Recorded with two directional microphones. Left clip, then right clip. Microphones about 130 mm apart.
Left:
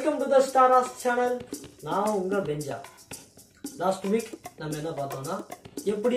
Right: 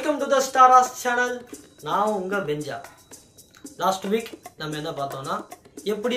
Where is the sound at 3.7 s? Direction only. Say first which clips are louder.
Right 3 dB; 20° left (ahead or behind).